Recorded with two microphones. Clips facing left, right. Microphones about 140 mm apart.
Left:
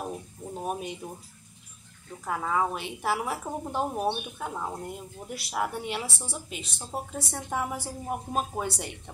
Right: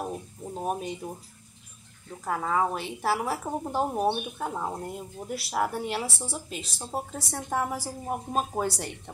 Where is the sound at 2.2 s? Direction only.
5° right (ahead or behind).